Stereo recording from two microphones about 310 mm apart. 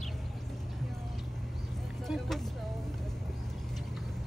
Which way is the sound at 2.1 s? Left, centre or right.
Centre.